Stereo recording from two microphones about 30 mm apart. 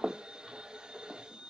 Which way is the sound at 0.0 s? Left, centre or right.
Right.